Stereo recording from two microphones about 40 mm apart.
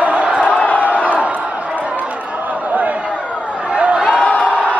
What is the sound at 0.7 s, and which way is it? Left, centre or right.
Crowd, right.